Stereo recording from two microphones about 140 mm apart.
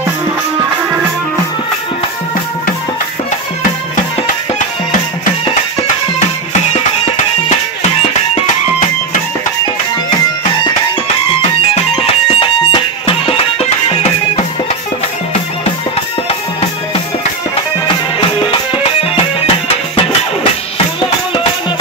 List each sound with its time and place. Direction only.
11.9 s music: 40° left (ahead or behind)
18.4 s music: 40° left (ahead or behind)